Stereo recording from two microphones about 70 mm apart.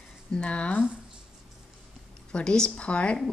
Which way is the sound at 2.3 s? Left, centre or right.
Centre.